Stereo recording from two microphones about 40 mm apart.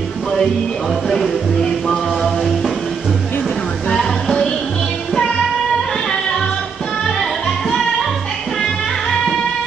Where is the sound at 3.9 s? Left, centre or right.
Centre.